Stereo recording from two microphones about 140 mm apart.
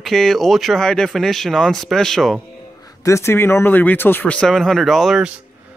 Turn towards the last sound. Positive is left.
turn(degrees=0)  # may be behind; listen again after turning